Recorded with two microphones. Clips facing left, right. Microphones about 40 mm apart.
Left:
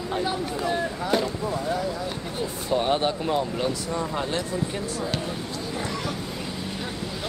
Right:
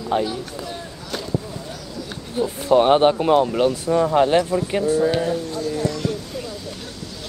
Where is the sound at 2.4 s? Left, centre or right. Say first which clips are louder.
Right 9 dB; centre.